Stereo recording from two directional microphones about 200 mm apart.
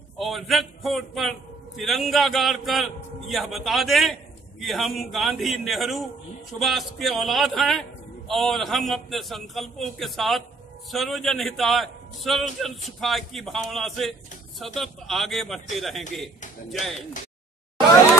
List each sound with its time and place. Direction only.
0.2 s a man's voice: centre (ahead or behind)